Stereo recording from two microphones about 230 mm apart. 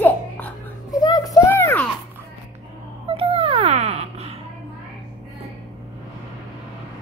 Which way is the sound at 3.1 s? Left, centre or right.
Right.